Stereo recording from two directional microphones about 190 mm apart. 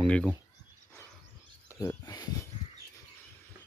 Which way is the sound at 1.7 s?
15° left (ahead or behind).